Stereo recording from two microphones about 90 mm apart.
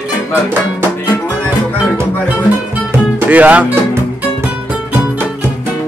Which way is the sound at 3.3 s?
15° right (ahead or behind).